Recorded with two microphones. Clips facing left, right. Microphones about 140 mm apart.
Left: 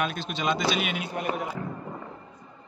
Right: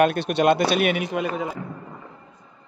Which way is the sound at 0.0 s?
65° right (ahead or behind).